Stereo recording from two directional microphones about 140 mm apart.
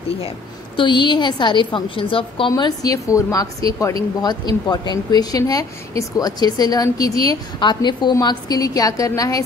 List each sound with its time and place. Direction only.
0.7 s a woman's voice: 35° left (ahead or behind)